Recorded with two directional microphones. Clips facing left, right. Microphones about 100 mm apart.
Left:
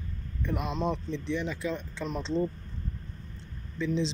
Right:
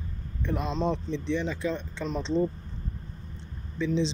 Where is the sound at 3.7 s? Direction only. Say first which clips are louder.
Right 2 dB; centre (ahead or behind).